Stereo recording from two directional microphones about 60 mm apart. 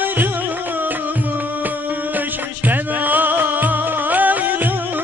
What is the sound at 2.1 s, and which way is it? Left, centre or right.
Music, right.